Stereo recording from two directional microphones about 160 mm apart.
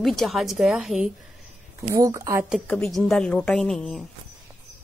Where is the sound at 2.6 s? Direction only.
5° left (ahead or behind).